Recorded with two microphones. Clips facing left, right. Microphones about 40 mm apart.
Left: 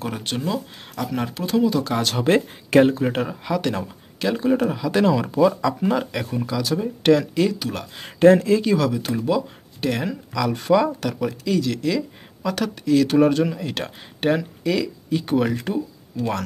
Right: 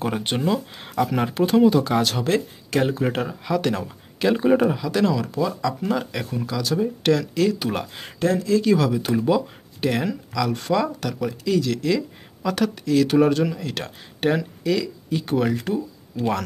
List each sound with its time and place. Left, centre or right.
0.0 s speech: centre
1.4 s speech: right
1.7 s speech: centre
2.2 s speech: left
2.9 s speech: centre
4.4 s speech: centre
4.6 s speech: centre
4.9 s speech: centre
7.5 s speech: centre
8.2 s speech: left
8.6 s speech: centre